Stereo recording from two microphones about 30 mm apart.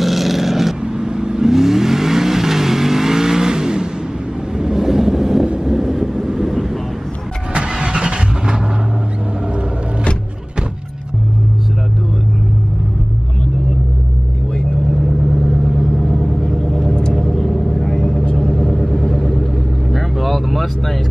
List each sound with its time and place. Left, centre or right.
0.0 s vehicle: centre
0.8 s vehicle: right; by 6.8 s centre
7.6 s vehicle: right
15.3 s vehicle: centre
16.0 s vehicle: centre
16.3 s a sound: centre
17.1 s vehicle: centre
18.2 s vehicle: left
18.6 s vehicle: centre